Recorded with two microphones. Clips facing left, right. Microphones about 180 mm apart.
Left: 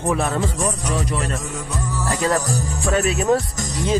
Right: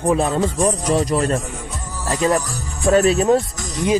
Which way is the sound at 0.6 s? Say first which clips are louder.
Right 5 dB; 35° right (ahead or behind).